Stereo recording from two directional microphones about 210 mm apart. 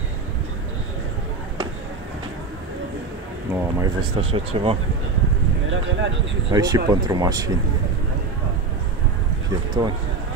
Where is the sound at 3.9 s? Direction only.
25° right (ahead or behind).